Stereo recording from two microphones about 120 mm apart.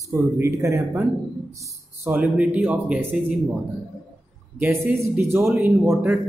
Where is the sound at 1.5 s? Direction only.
25° right (ahead or behind).